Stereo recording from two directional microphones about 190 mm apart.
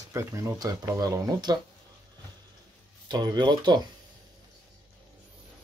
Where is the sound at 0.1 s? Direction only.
15° right (ahead or behind).